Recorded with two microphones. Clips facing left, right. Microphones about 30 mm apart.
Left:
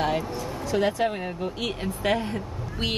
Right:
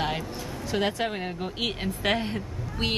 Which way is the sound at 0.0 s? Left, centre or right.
Centre.